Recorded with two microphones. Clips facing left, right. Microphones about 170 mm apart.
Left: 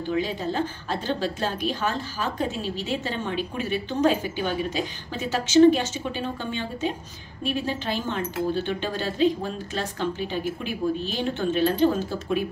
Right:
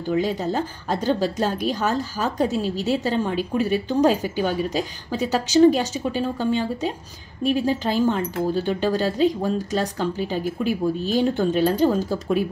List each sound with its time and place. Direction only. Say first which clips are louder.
0.2 s a woman's voice: right 3 dB; 40° right (ahead or behind)